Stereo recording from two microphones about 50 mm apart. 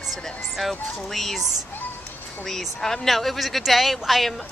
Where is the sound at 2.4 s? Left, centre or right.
Centre.